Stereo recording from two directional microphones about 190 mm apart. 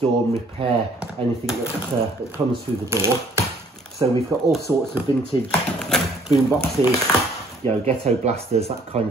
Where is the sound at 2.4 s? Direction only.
15° right (ahead or behind).